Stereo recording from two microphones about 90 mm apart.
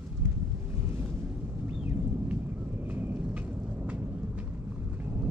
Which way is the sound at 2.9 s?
20° right (ahead or behind).